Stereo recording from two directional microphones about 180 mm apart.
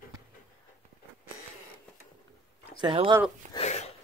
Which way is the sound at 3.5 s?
40° left (ahead or behind).